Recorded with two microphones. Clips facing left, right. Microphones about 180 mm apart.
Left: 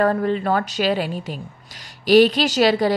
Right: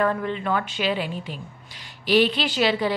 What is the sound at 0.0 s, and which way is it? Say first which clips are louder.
A woman's voice: left 5 dB; 40° left (ahead or behind).